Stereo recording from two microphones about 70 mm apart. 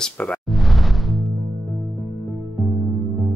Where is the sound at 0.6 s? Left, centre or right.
Centre.